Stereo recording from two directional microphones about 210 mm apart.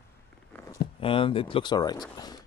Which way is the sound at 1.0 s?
25° left (ahead or behind).